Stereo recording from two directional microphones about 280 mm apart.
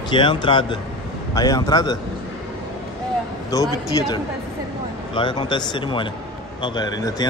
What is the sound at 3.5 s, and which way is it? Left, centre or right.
A man's voice, centre.